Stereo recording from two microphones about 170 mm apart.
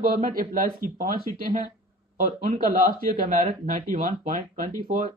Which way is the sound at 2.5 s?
60° right (ahead or behind).